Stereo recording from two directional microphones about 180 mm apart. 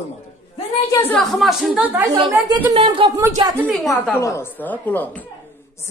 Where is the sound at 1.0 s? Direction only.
5° left (ahead or behind).